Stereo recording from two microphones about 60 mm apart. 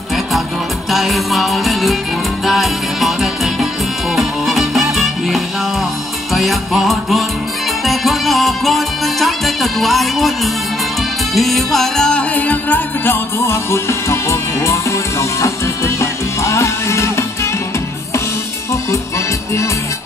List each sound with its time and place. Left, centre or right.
0.9 s music: centre; by 13.6 s left
13.7 s music: left